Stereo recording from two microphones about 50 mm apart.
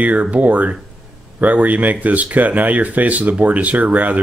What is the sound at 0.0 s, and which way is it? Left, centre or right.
Speech, right.